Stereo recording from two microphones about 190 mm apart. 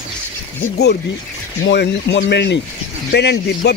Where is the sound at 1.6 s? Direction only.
65° left (ahead or behind).